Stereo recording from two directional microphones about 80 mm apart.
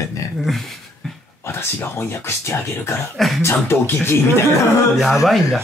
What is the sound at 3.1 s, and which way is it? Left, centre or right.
Speech, centre.